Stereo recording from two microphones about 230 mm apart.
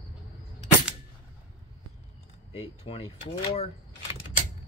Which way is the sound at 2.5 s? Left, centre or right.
Left.